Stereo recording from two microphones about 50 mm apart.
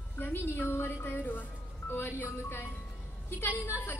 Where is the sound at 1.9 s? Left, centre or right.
Left.